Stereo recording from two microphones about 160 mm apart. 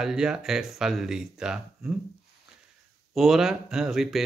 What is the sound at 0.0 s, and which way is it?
Speech, 5° right (ahead or behind).